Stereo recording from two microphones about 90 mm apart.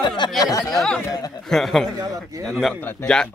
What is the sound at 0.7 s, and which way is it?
Speech, 5° left (ahead or behind).